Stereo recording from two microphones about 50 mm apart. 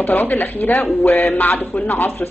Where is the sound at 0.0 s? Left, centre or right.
Left.